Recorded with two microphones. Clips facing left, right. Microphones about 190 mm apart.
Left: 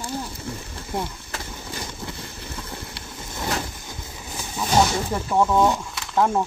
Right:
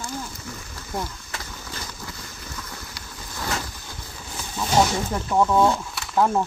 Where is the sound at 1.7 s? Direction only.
20° left (ahead or behind).